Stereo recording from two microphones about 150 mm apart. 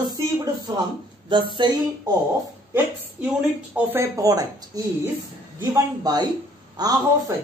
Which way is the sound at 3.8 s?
20° right (ahead or behind).